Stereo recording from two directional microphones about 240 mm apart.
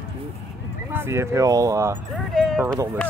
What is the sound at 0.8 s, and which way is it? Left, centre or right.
Speech, centre.